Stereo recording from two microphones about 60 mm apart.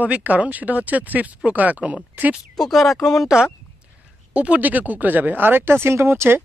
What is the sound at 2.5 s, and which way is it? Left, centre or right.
Speech, centre.